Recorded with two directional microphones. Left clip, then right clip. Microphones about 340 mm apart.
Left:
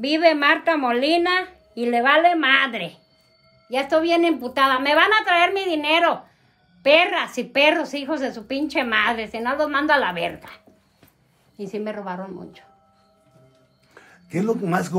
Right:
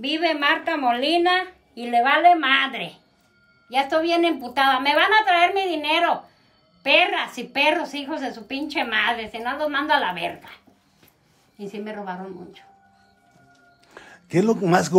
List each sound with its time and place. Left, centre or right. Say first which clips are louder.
0.0 s a woman's voice: left 4 dB; centre
13.9 s speech: right 6 dB; right